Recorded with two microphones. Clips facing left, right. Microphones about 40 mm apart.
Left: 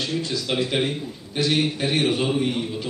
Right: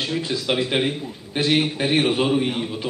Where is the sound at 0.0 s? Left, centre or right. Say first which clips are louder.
Right 2 dB; right.